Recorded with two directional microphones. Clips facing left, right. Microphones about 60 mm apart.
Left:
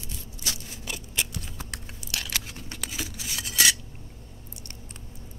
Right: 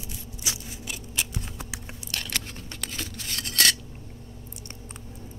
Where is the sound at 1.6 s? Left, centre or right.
Centre.